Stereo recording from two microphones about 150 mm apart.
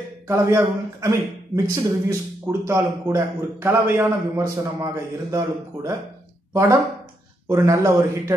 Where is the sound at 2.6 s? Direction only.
15° right (ahead or behind).